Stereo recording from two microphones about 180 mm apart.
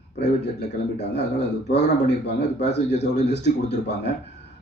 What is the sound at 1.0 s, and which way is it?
Speech, 70° left (ahead or behind).